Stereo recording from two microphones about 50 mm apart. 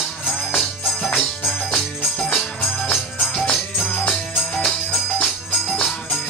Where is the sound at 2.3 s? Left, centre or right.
Centre.